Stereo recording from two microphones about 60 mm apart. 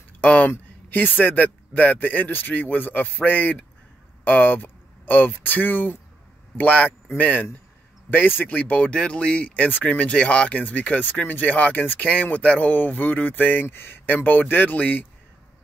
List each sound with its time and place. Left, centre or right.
0.2 s speech: left
9.7 s speech: left